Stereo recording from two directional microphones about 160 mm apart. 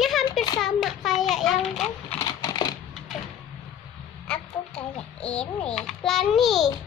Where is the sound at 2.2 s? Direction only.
25° left (ahead or behind).